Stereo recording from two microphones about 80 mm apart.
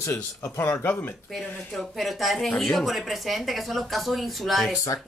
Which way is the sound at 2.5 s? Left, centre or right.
Centre.